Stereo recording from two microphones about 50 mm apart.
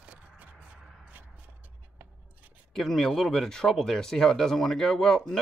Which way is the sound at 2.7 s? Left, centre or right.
Centre.